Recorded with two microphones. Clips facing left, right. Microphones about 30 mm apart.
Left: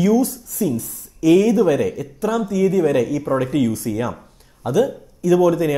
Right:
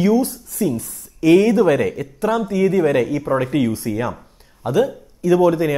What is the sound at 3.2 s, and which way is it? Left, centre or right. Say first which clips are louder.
Speech: right 1 dB; centre.